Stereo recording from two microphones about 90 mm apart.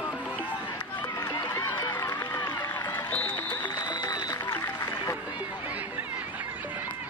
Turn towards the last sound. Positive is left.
turn(degrees=40)  # may be behind; listen again after turning